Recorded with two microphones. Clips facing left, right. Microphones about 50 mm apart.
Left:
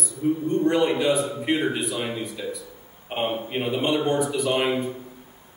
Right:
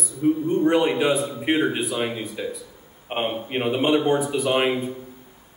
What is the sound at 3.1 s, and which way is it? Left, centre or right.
A man's voice, right.